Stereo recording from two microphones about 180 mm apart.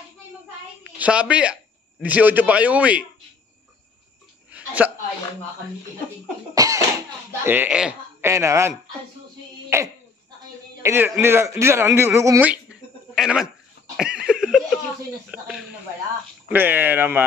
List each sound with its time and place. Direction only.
0.8 s a man's voice: 5° right (ahead or behind)
4.5 s a sound: 10° right (ahead or behind)
6.5 s cough: 20° right (ahead or behind)
7.4 s a man's voice: 10° right (ahead or behind)
13.9 s laughter: 5° right (ahead or behind)
16.4 s speech: 10° right (ahead or behind)